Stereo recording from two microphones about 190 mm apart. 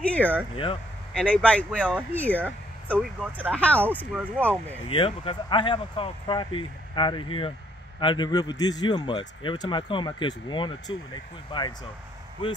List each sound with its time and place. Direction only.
0.1 s a man's voice: 10° left (ahead or behind)
4.8 s a man's voice: 30° left (ahead or behind)